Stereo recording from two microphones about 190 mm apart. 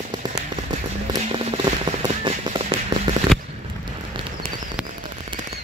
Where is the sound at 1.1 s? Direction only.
30° right (ahead or behind).